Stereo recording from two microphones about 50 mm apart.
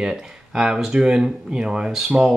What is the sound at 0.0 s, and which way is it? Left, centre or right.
Speech, centre.